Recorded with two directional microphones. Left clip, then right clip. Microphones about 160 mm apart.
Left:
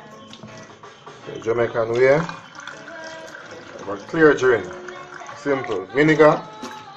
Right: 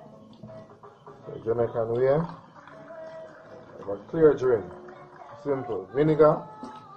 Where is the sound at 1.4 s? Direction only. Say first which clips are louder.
Left 5 dB; 5° left (ahead or behind).